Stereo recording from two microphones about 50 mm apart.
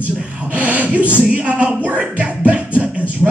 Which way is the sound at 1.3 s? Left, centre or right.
Right.